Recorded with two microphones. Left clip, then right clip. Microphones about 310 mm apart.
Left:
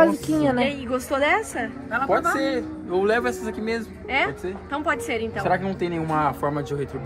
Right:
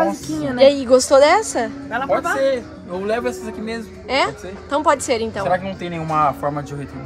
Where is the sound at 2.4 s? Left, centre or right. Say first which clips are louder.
Right 6 dB; centre.